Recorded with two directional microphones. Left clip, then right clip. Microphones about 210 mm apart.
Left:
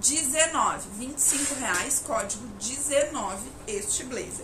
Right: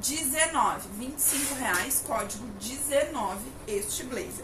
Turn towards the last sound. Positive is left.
turn(degrees=10)  # may be behind; listen again after turning